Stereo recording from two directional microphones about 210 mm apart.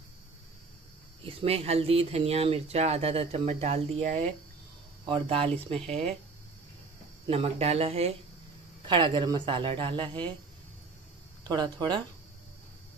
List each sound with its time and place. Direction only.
1.2 s speech: 30° right (ahead or behind)
7.2 s speech: 30° right (ahead or behind)
11.4 s speech: 20° right (ahead or behind)